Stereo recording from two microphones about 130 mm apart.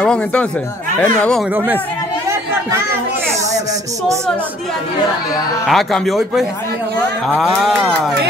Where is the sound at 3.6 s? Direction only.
25° right (ahead or behind).